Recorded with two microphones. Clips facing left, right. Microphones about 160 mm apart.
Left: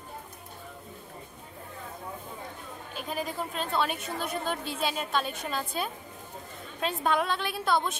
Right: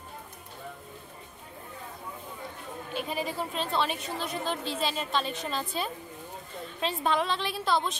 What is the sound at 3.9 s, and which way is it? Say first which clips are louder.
Speech: even; 50° left (ahead or behind).